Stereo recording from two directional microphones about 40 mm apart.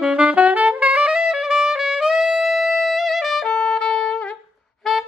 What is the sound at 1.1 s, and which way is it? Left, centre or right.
Music, centre.